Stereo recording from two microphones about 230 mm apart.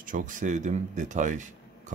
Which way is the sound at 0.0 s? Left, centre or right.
Right.